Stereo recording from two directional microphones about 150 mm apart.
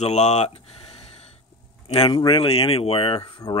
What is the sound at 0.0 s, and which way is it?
Speech, 50° left (ahead or behind).